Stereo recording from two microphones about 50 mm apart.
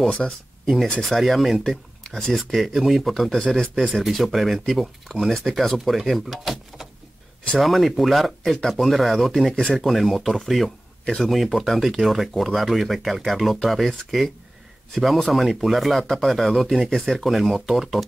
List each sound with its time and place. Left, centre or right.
0.2 s speech: centre
2.0 s speech: centre
2.3 s speech: centre
3.6 s speech: centre
3.9 s speech: centre